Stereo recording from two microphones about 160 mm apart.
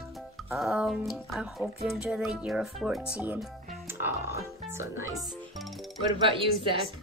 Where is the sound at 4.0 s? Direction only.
15° right (ahead or behind).